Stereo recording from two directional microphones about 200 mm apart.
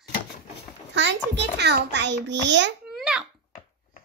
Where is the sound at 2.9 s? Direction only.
5° right (ahead or behind).